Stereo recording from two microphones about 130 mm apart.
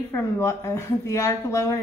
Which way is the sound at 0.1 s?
20° left (ahead or behind).